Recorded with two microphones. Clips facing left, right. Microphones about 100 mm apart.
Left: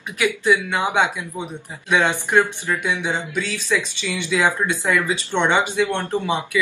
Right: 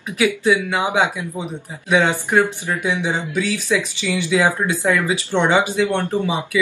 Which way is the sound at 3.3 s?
15° right (ahead or behind).